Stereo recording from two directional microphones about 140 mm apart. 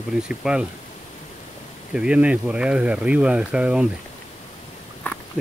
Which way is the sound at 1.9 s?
5° right (ahead or behind).